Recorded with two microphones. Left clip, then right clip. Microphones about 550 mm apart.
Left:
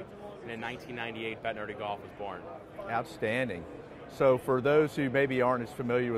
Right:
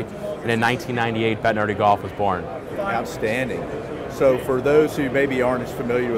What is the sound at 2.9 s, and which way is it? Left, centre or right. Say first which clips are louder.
Speech: right 5 dB; left.